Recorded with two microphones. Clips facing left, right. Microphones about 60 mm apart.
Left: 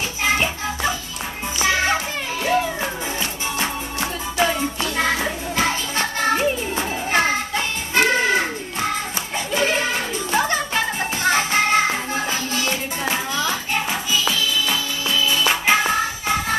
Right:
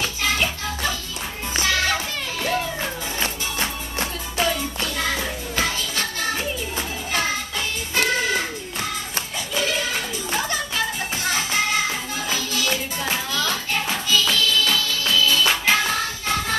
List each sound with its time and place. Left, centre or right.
0.2 s music: left
1.6 s children playing: left
2.4 s music: centre
3.5 s music: left